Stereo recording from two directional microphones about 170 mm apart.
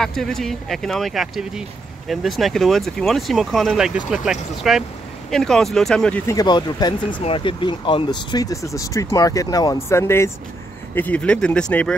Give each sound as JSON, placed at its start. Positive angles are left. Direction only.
{"t": 0.0, "sound": "speech", "side_deg": 0}
{"t": 6.3, "sound": "speech", "side_deg": 25}